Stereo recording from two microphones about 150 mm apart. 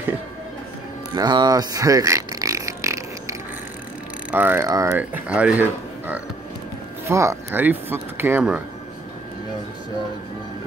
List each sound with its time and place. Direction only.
1.1 s fart: 25° right (ahead or behind)
4.3 s speech: 15° right (ahead or behind)
4.6 s speech: 25° right (ahead or behind)
4.9 s speech: 10° right (ahead or behind)